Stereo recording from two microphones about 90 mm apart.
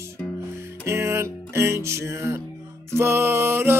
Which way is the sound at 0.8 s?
30° right (ahead or behind).